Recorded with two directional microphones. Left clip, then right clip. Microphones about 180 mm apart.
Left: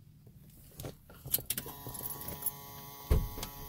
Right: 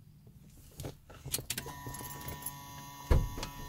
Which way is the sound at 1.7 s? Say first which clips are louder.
Right 3 dB; 50° left (ahead or behind).